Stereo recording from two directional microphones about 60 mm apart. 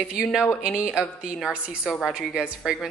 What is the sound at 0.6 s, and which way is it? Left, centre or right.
Speech, right.